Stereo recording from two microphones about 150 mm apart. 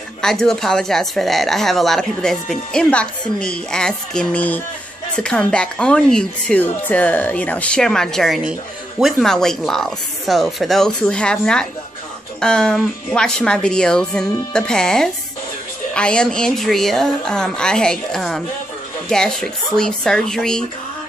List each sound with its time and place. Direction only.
0.2 s a woman's voice: 5° left (ahead or behind)